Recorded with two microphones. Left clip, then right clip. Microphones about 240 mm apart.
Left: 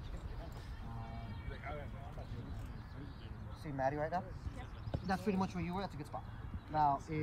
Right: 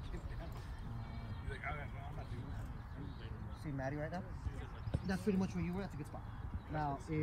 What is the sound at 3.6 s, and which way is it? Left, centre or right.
Speech, left.